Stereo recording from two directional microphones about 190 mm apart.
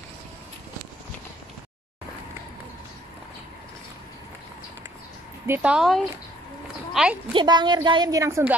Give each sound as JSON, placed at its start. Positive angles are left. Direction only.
{"t": 5.5, "sound": "speech", "side_deg": -5}
{"t": 7.3, "sound": "a woman's voice", "side_deg": -25}